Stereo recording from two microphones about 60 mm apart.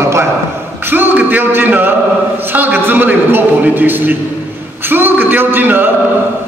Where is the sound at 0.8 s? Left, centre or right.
Right.